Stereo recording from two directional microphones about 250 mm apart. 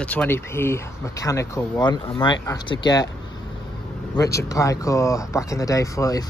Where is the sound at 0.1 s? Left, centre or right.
Centre.